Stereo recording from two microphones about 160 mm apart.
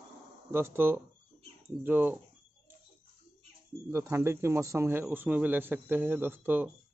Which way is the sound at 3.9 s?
15° right (ahead or behind).